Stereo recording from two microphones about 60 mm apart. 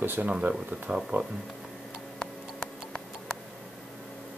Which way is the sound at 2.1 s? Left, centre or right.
Centre.